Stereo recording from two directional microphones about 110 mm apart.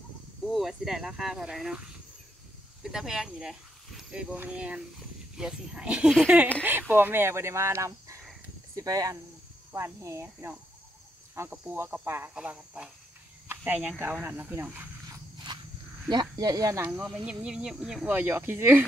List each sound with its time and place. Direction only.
0.5 s speech: 5° right (ahead or behind); by 12.3 s 20° right (ahead or behind)
12.4 s speech: 10° right (ahead or behind)
16.1 s speech: 35° right (ahead or behind)
16.8 s speech: 10° right (ahead or behind)